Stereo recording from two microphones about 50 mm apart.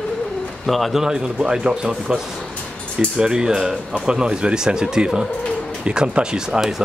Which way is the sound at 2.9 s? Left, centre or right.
Centre.